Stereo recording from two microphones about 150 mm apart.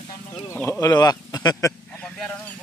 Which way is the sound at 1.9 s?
5° left (ahead or behind).